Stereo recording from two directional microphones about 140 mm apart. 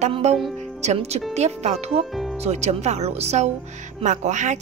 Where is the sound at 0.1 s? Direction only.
50° right (ahead or behind).